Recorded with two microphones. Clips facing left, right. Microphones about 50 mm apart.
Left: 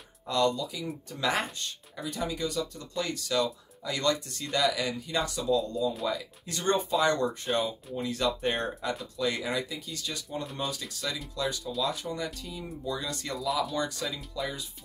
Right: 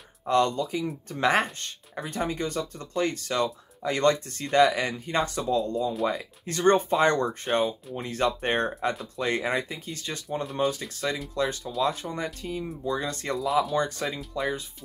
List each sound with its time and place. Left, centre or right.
0.3 s speech: right
10.4 s speech: centre
10.7 s speech: right